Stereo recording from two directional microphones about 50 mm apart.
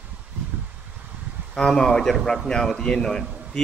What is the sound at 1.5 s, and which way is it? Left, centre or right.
A man's voice, centre.